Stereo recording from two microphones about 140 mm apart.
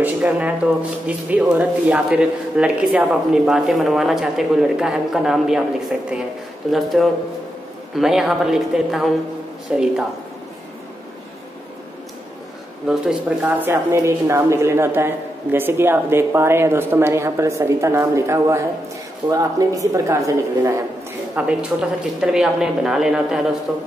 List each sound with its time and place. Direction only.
0.0 s speech: 10° right (ahead or behind)
12.8 s speech: 5° right (ahead or behind)
13.4 s a woman's voice: 15° right (ahead or behind)
21.4 s speech: 5° right (ahead or behind)